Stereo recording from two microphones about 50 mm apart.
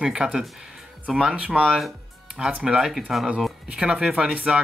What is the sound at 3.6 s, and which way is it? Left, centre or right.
Speech, centre.